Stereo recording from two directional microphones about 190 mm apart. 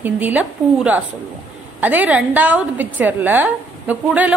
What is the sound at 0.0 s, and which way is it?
A woman's voice, 10° right (ahead or behind).